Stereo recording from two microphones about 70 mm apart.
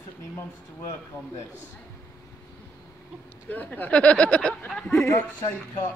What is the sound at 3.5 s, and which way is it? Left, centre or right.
Speech, left.